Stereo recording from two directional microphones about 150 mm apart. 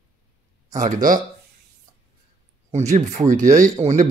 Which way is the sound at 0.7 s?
55° right (ahead or behind).